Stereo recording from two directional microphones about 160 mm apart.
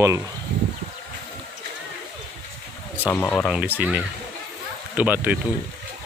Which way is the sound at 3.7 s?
10° right (ahead or behind).